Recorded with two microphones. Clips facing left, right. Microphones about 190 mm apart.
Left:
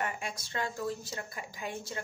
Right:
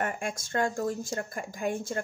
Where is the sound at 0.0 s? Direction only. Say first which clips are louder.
Right 5 dB; 50° right (ahead or behind).